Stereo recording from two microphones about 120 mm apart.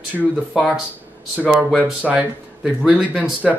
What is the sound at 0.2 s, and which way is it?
Speech, 10° right (ahead or behind).